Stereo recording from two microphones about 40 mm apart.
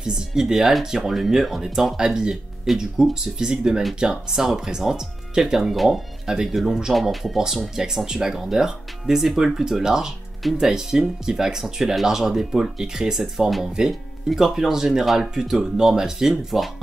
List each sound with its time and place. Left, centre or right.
0.0 s speech: centre
2.7 s speech: centre
3.0 s speech: centre
6.2 s speech: centre
6.5 s speech: centre
7.3 s speech: centre
13.2 s speech: centre
14.4 s speech: centre